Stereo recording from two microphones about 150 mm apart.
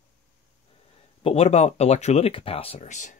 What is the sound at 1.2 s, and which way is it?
Speech, 40° left (ahead or behind).